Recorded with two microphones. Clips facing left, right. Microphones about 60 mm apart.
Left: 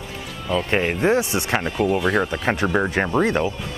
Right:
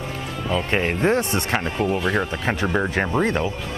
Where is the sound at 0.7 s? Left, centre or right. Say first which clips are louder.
Left 1 dB; centre.